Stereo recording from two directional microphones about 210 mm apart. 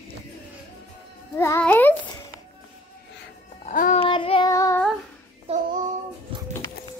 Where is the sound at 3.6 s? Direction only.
35° left (ahead or behind).